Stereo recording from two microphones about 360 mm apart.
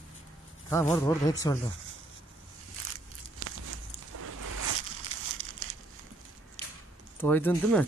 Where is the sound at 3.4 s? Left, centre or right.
Right.